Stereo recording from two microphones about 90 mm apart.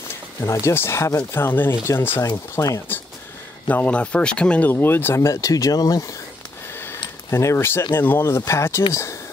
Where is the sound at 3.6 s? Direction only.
15° left (ahead or behind); by 6.1 s 45° left (ahead or behind).